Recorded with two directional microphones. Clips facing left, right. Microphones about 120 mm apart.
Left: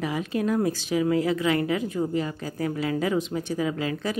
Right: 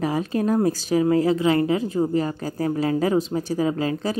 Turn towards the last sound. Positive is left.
turn(degrees=-35)  # may be behind; listen again after turning